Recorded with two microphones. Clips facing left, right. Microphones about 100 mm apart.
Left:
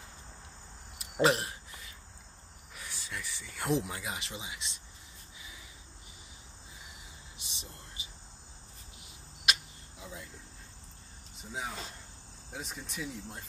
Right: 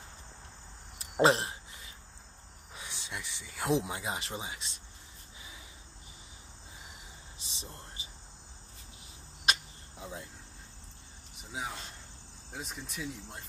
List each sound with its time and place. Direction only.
0.9 s a sound: 30° right (ahead or behind)
2.7 s cricket: 20° right (ahead or behind)
3.5 s speech: 15° right (ahead or behind)
4.3 s speech: 40° right (ahead or behind)
7.3 s a sound: 30° right (ahead or behind)
9.5 s cricket: 30° right (ahead or behind)
12.5 s speech: centre (ahead or behind)